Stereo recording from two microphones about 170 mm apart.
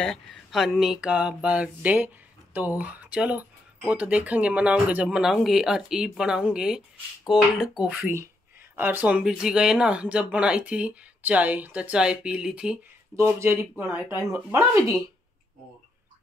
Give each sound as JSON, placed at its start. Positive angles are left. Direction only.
{"t": 0.5, "sound": "speech", "side_deg": 0}
{"t": 13.1, "sound": "speech", "side_deg": -15}